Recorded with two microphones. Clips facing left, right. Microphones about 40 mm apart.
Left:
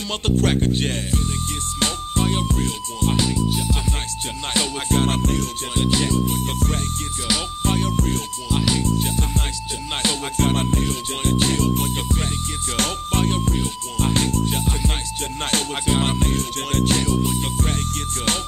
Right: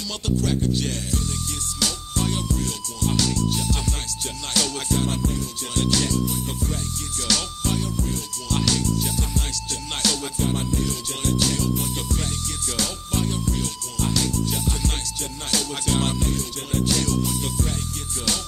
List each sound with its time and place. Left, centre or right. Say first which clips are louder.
0.2 s music: left 4 dB; left
3.3 s speech: left 2 dB; centre
4.6 s music: left 3 dB; left
5.0 s music: left 4 dB; left
5.8 s speech: left 2 dB; left
6.3 s music: left 4 dB; left
8.5 s music: left 2 dB; centre
8.8 s music: left 3 dB; left
10.4 s music: left 4 dB; left
15.8 s music: left 3 dB; left
17.0 s music: left 3 dB; left